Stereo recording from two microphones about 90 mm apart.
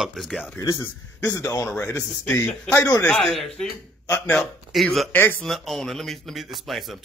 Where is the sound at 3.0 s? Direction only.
15° left (ahead or behind).